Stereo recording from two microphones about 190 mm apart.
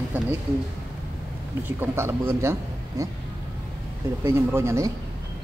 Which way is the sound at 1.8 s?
15° right (ahead or behind).